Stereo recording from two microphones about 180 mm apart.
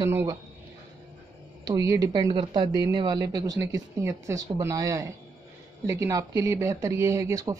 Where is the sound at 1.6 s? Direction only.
20° right (ahead or behind).